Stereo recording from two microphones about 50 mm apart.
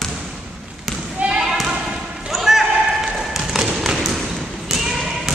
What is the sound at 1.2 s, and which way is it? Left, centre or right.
Basketball bounce, right.